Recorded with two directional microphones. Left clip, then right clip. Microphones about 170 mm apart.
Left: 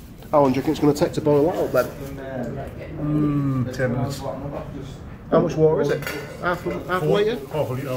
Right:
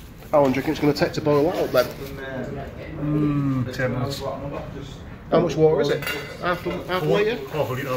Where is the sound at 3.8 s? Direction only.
25° right (ahead or behind).